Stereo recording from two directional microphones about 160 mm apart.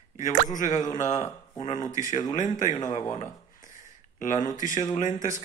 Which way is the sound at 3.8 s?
50° left (ahead or behind).